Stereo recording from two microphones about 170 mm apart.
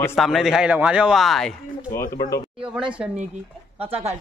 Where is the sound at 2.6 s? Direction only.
5° right (ahead or behind).